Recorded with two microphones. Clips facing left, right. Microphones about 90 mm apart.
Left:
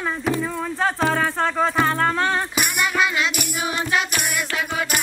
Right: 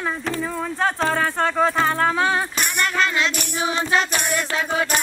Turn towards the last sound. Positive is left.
turn(degrees=5)  # may be behind; listen again after turning